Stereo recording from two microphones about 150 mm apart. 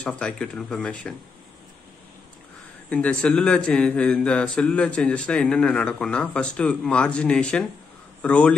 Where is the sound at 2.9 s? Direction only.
10° left (ahead or behind).